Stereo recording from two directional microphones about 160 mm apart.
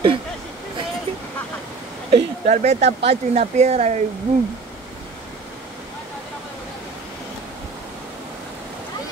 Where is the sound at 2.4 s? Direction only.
50° right (ahead or behind).